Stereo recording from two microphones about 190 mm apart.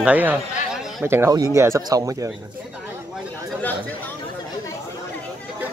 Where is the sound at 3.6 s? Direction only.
10° left (ahead or behind).